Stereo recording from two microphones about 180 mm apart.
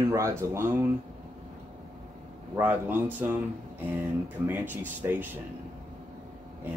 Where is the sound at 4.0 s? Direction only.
10° right (ahead or behind).